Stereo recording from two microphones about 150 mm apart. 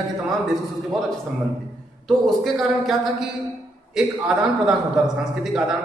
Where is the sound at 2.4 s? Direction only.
Centre (ahead or behind).